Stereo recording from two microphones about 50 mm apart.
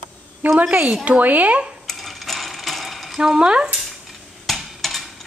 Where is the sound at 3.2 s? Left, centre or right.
Centre.